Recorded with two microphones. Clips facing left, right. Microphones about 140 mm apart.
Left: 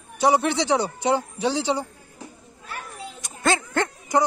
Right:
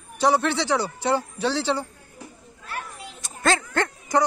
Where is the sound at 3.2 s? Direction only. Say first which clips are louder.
Even; 20° left (ahead or behind).